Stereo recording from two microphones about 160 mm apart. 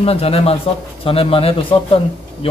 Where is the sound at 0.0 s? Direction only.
40° left (ahead or behind).